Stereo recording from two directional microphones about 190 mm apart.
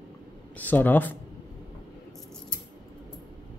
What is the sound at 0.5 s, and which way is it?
Speech, 10° left (ahead or behind).